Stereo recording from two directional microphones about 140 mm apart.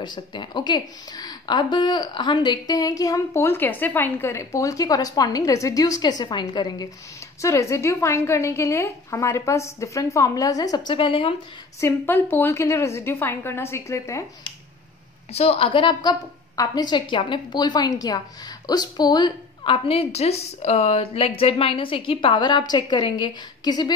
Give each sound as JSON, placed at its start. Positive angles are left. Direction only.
{"t": 0.0, "sound": "a woman's voice", "side_deg": 35}
{"t": 7.4, "sound": "a woman's voice", "side_deg": 20}
{"t": 11.8, "sound": "a woman's voice", "side_deg": 15}
{"t": 15.3, "sound": "a woman's voice", "side_deg": 45}